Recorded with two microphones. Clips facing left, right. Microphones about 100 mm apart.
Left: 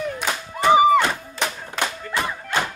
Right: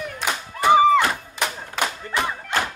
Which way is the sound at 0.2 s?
10° right (ahead or behind).